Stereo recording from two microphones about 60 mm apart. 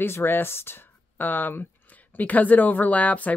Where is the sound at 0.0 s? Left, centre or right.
Left.